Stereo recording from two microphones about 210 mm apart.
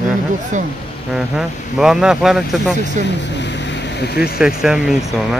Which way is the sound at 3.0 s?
55° left (ahead or behind).